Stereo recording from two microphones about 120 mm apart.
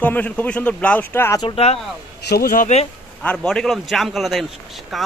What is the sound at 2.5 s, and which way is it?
Speech, 75° left (ahead or behind).